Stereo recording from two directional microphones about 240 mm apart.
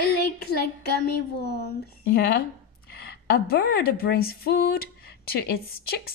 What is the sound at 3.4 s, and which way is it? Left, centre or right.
Speech, left.